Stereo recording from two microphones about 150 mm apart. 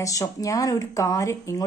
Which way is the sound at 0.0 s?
20° left (ahead or behind).